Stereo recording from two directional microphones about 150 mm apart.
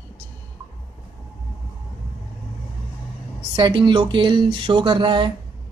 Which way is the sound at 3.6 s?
30° right (ahead or behind).